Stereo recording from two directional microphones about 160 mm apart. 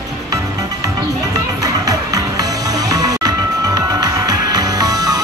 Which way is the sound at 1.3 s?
20° right (ahead or behind).